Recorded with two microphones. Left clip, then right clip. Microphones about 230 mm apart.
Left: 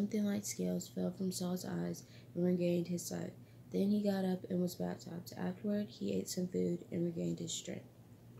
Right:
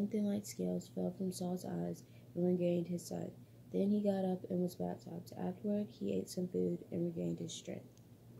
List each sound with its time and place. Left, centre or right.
0.1 s speech: centre